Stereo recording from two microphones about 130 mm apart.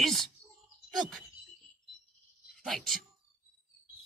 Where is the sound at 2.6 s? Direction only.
Centre (ahead or behind).